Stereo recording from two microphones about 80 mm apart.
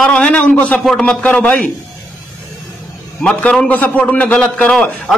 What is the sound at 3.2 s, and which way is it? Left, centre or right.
A man's voice, centre.